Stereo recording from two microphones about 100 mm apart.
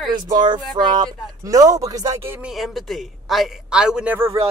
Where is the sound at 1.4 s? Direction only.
35° right (ahead or behind).